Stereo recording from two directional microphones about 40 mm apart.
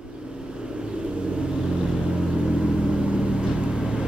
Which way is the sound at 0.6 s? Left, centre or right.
Centre.